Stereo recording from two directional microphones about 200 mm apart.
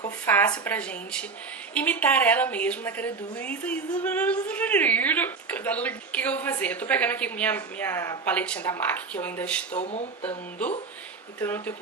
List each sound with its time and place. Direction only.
0.2 s a woman's voice: 10° left (ahead or behind)
9.7 s speech: 35° left (ahead or behind)
11.4 s a woman's voice: 10° left (ahead or behind)